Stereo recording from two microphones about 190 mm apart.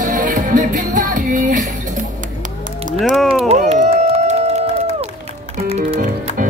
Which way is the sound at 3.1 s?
Centre (ahead or behind).